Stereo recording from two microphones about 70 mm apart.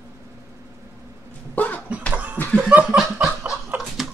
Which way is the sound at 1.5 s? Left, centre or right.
Left.